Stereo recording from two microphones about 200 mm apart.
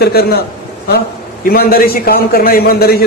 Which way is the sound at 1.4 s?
50° left (ahead or behind).